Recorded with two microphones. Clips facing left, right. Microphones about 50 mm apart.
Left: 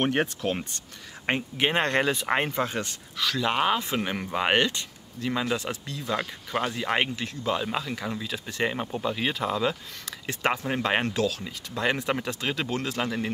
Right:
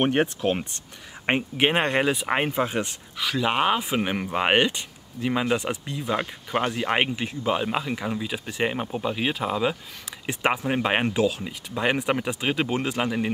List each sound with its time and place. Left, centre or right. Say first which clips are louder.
0.0 s speech: right 3 dB; centre